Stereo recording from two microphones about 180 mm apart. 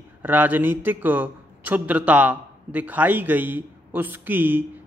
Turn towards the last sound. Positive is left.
turn(degrees=-10)  # may be behind; listen again after turning